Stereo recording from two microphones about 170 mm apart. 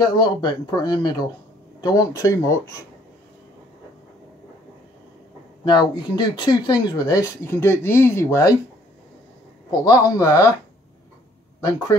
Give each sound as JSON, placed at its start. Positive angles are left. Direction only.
{"t": 0.0, "sound": "speech", "side_deg": 25}
{"t": 5.7, "sound": "speech", "side_deg": 25}
{"t": 9.7, "sound": "speech", "side_deg": 20}